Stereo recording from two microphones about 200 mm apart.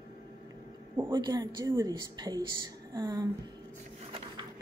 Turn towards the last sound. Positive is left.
turn(degrees=-20)  # may be behind; listen again after turning